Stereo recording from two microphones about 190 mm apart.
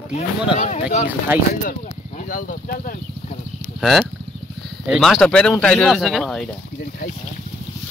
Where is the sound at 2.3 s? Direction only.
45° left (ahead or behind).